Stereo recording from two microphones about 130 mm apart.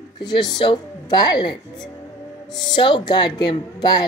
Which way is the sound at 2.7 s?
35° left (ahead or behind).